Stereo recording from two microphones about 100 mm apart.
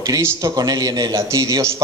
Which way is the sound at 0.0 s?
30° right (ahead or behind).